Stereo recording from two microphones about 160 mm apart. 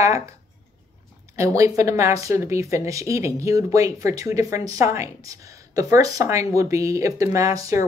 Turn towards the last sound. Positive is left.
turn(degrees=-20)  # may be behind; listen again after turning